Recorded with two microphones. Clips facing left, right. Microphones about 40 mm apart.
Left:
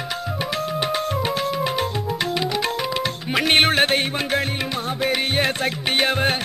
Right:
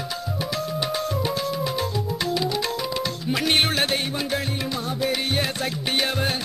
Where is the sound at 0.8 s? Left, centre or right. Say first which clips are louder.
Left 2 dB; left.